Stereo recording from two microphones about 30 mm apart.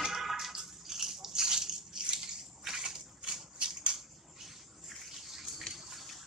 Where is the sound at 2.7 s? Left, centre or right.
Right.